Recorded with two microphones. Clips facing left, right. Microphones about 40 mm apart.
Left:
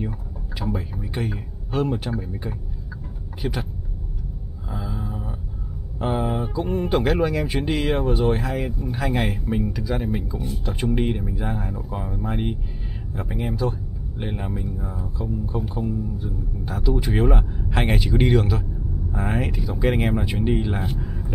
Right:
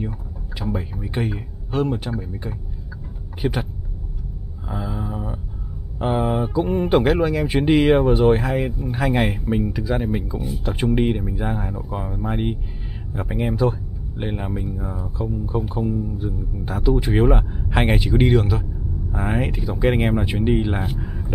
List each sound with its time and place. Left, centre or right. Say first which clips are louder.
0.6 s speech: right 1 dB; centre
1.7 s speech: right 1 dB; centre
3.4 s speech: right 4 dB; right
4.6 s a sound: right 3 dB; centre
5.9 s speech: right 3 dB; centre
7.2 s speech: right 2 dB; centre
7.4 s speech: right 7 dB; centre